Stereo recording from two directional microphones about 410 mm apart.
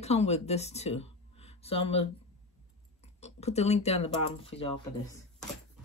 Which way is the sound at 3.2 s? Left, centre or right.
Centre.